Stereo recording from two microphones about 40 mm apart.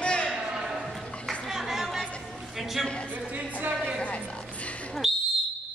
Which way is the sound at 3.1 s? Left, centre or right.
Right.